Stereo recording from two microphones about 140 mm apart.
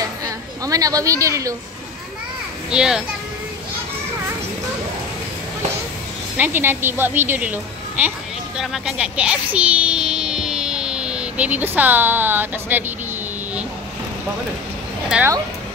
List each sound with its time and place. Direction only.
0.0 s a sound: 25° right (ahead or behind)
2.7 s a child's voice: 5° right (ahead or behind)
6.3 s a woman's voice: 15° right (ahead or behind)